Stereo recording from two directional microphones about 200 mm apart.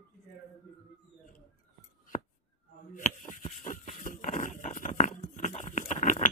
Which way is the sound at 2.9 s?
40° left (ahead or behind).